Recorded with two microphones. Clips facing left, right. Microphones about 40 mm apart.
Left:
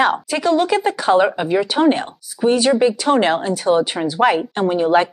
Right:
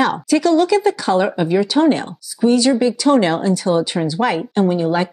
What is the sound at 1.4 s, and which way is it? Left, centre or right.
Speech, centre.